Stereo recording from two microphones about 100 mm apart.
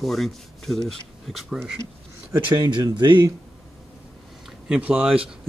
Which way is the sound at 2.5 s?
40° right (ahead or behind).